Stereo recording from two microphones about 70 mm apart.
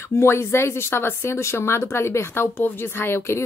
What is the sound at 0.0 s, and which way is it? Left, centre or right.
Speech, left.